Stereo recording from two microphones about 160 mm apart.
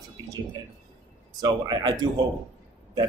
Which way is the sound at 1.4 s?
25° right (ahead or behind).